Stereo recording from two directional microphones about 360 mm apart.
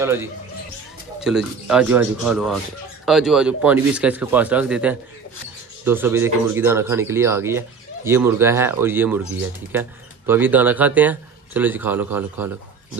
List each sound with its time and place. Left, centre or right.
0.0 s speech: centre